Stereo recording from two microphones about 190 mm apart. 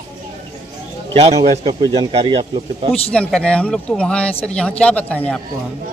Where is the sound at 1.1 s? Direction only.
35° right (ahead or behind).